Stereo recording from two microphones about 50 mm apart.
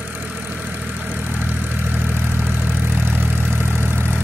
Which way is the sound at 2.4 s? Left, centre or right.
Right.